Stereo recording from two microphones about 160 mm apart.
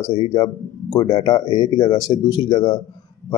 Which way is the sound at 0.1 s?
30° left (ahead or behind).